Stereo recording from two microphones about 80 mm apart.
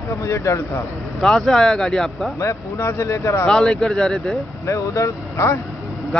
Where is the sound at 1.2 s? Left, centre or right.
Centre.